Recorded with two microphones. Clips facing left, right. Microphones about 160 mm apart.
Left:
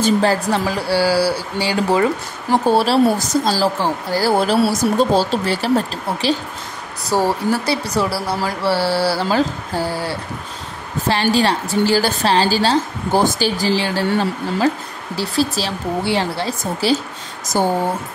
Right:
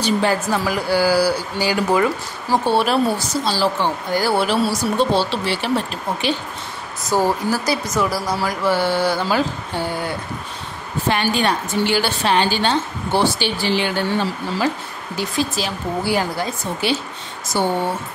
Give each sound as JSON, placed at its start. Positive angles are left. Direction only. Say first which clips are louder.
{"t": 0.0, "sound": "a woman's voice", "louder": "left 3 dB", "side_deg": 35}
{"t": 15.1, "sound": "a woman's voice", "louder": "left 3 dB", "side_deg": 35}
{"t": 17.5, "sound": "speech", "louder": "left 2 dB", "side_deg": 45}